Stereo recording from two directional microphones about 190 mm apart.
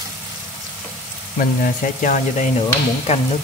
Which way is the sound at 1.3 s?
45° left (ahead or behind).